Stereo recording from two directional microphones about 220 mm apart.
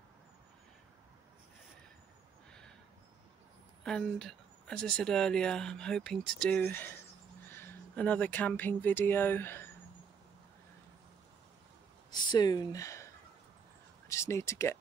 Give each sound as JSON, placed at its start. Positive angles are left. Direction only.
{"t": 3.8, "sound": "speech", "side_deg": 0}
{"t": 12.1, "sound": "speech", "side_deg": 20}